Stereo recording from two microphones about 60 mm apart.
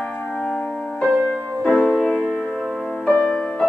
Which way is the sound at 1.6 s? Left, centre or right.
Centre.